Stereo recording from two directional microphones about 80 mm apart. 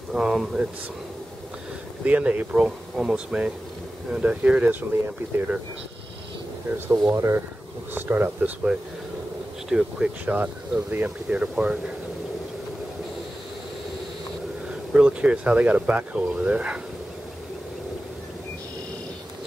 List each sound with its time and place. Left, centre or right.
0.1 s speech: centre
2.0 s speech: centre
6.9 s speech: right
9.7 s speech: centre
10.2 s speech: centre
14.9 s speech: centre